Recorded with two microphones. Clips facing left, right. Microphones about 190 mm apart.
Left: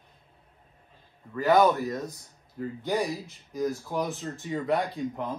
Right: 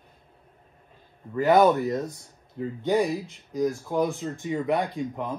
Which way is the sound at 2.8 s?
15° right (ahead or behind).